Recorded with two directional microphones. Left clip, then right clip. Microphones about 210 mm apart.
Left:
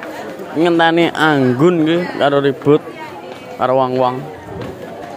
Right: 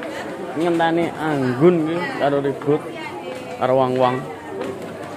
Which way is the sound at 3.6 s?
25° left (ahead or behind).